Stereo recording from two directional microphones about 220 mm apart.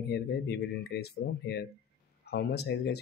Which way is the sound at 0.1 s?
50° left (ahead or behind).